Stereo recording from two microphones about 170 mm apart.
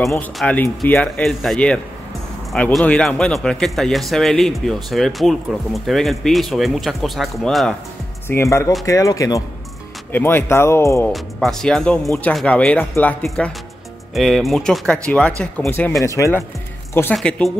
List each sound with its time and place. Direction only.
0.4 s speech: 5° left (ahead or behind)
8.3 s speech: 15° left (ahead or behind)
11.1 s speech: centre (ahead or behind)